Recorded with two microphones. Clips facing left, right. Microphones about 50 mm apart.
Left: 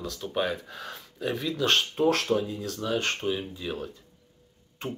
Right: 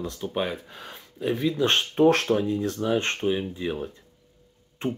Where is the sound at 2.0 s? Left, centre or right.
Right.